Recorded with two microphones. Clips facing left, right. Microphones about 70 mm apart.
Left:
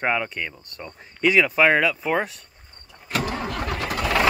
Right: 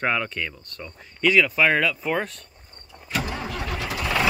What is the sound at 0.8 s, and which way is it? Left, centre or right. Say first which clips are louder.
Speech: left 1 dB; left.